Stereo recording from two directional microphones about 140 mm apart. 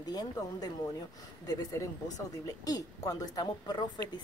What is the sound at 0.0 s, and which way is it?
A woman's voice, 30° left (ahead or behind).